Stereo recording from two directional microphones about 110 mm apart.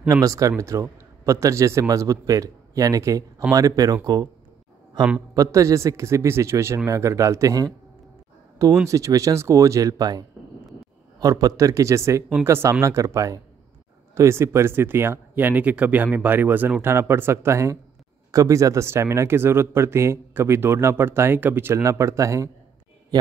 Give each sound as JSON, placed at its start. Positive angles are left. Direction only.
{"t": 0.1, "sound": "speech", "side_deg": -30}
{"t": 5.3, "sound": "speech", "side_deg": -30}
{"t": 8.8, "sound": "speech", "side_deg": -30}